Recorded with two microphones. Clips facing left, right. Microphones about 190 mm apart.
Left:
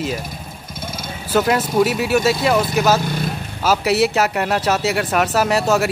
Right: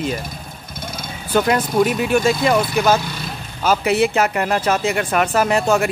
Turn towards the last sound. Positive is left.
turn(degrees=5)  # may be behind; listen again after turning